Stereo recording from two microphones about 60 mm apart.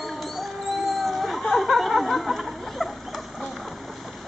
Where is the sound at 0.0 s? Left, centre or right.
Centre.